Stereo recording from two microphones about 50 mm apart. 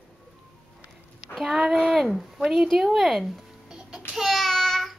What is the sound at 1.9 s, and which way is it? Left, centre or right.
Fowl, centre.